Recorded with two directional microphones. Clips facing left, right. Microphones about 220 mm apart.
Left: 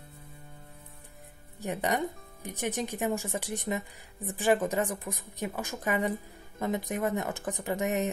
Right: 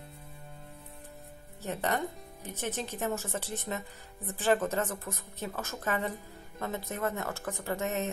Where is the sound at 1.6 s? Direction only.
15° left (ahead or behind).